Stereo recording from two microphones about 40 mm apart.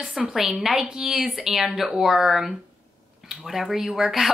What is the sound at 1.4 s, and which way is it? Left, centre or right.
Speech, centre.